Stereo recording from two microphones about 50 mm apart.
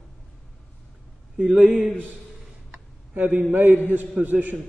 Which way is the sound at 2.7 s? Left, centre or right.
Right.